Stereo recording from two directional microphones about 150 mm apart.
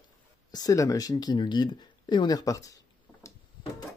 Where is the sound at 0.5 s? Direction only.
25° left (ahead or behind).